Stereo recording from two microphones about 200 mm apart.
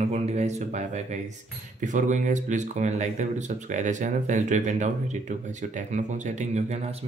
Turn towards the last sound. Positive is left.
turn(degrees=-35)  # may be behind; listen again after turning